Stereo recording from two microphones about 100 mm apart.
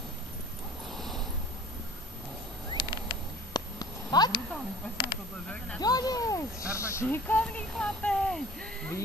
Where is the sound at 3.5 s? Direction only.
45° left (ahead or behind).